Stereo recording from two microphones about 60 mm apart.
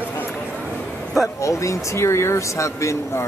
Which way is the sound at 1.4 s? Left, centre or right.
Left.